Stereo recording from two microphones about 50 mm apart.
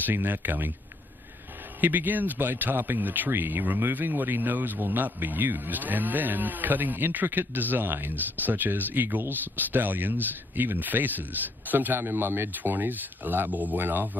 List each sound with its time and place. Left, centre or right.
0.0 s speech: right
1.8 s speech: right